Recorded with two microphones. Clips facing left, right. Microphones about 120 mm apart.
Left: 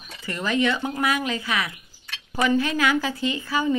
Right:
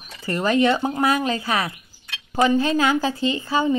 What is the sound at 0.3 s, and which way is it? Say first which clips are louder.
Speech: right 5 dB; 40° right (ahead or behind).